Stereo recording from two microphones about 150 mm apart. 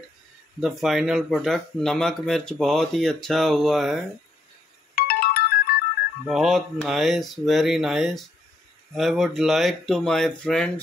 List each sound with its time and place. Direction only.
0.6 s speech: centre (ahead or behind)
4.9 s ringtone: 85° left
6.2 s speech: centre (ahead or behind)